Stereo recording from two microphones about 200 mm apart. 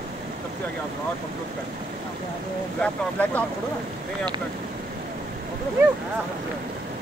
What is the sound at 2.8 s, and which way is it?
Speech, 5° left (ahead or behind).